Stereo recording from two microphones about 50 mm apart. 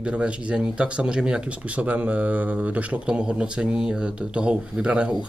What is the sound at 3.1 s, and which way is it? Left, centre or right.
Speech, centre.